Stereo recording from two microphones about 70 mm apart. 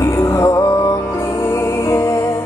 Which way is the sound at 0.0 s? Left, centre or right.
Left.